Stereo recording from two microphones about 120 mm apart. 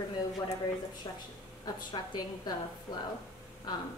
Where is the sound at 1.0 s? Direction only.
35° left (ahead or behind).